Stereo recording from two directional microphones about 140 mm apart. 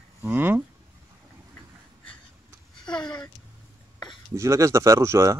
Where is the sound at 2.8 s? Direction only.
5° left (ahead or behind).